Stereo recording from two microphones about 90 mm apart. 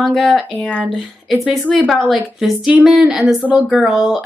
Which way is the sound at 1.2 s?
Centre (ahead or behind).